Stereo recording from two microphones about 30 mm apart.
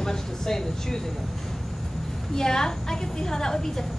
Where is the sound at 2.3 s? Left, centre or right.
Left.